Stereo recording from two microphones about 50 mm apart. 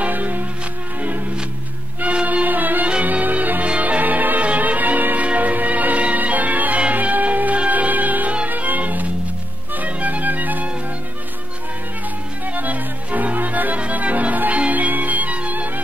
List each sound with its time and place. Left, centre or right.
0.0 s music: right
2.0 s music: right
12.4 s music: right